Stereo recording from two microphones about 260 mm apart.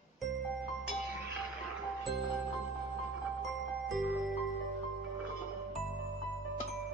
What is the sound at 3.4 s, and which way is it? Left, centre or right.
Glockenspiel, centre.